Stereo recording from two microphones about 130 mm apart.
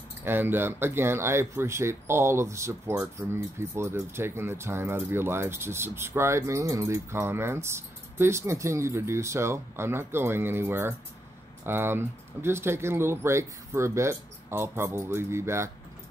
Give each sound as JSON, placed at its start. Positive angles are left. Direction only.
{"t": 0.2, "sound": "speech", "side_deg": -15}